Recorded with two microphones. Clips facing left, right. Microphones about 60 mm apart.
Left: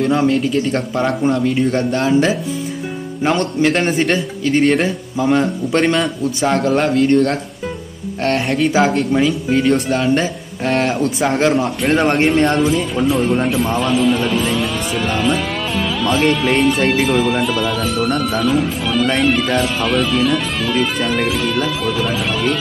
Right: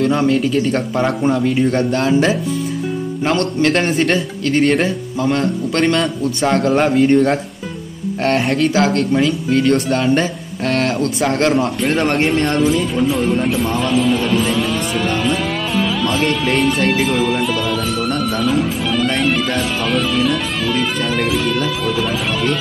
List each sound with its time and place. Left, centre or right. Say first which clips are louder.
0.0 s speech: even; centre
8.7 s a man's voice: even; centre